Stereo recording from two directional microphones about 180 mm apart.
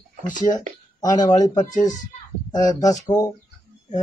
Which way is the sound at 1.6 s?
45° left (ahead or behind).